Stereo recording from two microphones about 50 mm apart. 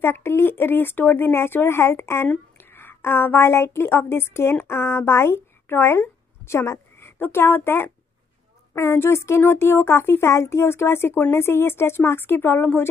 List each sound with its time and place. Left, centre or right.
0.0 s speech: left
2.5 s a woman's voice: left
7.2 s speech: left
8.7 s speech: left
10.3 s speech: left